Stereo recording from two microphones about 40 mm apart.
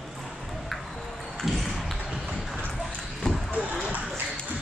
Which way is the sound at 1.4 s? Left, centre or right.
Centre.